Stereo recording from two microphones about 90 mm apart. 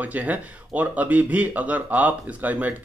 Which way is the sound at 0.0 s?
20° right (ahead or behind).